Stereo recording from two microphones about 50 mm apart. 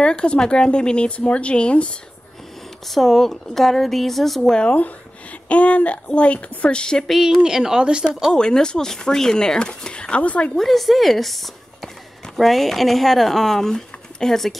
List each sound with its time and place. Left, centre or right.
0.0 s speech: centre
2.9 s speech: centre
4.6 s speech: left
7.1 s a woman's voice: centre
8.4 s speech: centre
10.5 s speech: centre